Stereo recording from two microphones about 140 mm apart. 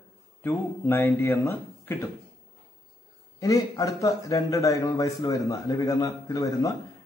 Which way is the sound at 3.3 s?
25° left (ahead or behind).